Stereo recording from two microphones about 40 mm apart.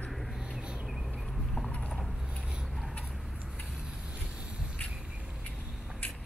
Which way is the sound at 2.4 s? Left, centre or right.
Centre.